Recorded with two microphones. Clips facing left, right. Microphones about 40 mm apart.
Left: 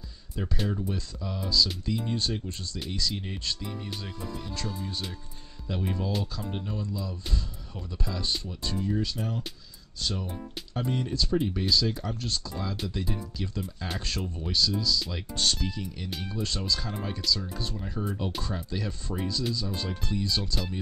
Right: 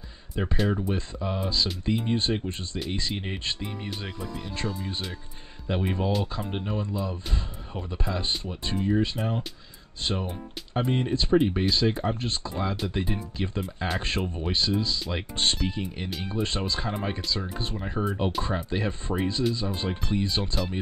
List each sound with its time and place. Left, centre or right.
0.3 s speech: right